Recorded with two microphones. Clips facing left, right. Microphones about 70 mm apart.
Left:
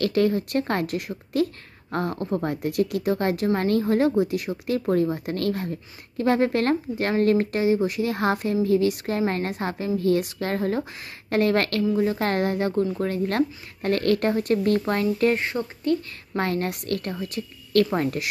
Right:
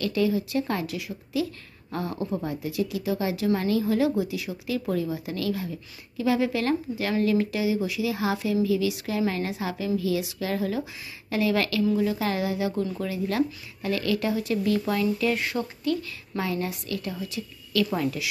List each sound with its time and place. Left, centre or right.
0.0 s speech: left
15.3 s speech: left
16.3 s speech: left
17.1 s a woman's voice: left